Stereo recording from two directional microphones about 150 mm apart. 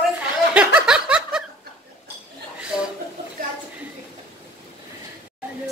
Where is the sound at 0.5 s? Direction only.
5° right (ahead or behind).